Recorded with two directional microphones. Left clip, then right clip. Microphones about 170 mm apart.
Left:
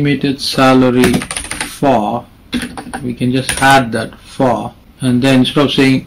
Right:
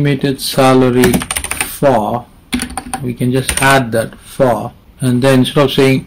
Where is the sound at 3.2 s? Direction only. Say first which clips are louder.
Left 1 dB; 40° right (ahead or behind).